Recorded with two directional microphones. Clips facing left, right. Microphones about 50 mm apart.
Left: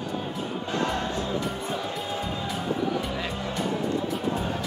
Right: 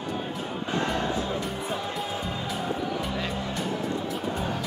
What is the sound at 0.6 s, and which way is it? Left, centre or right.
Music, right.